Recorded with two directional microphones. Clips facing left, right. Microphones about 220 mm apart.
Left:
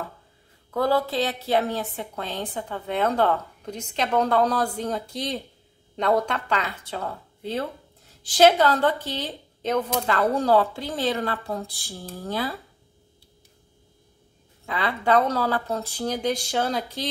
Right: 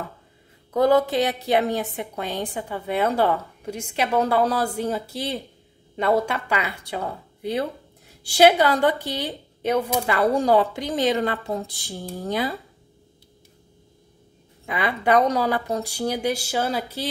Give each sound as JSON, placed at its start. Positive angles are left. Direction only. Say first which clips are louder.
{"t": 0.7, "sound": "a woman's voice", "louder": "right 4 dB", "side_deg": -20}
{"t": 14.7, "sound": "a woman's voice", "louder": "right 2 dB", "side_deg": -15}